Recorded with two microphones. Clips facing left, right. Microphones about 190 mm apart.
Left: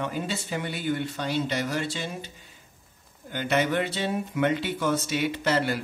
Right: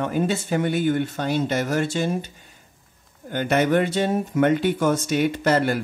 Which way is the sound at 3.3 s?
50° right (ahead or behind).